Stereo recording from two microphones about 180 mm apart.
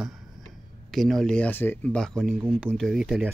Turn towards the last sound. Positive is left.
turn(degrees=0)  # may be behind; listen again after turning